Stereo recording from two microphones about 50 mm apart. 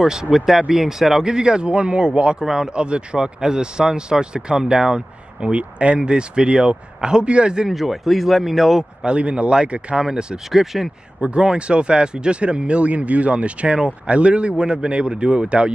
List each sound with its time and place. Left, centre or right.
0.0 s speech: centre
2.4 s speech: centre
2.7 s speech: right
7.7 s speech: centre
9.0 s speech: right
10.5 s speech: centre
11.1 s speech: centre